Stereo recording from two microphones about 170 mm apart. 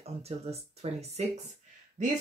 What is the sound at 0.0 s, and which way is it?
Speech, 35° right (ahead or behind).